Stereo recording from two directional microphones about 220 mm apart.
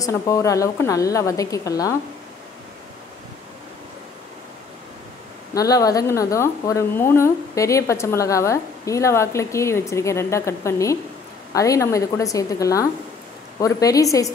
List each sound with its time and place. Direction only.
0.0 s a woman's voice: 15° left (ahead or behind)
5.5 s a woman's voice: 15° left (ahead or behind)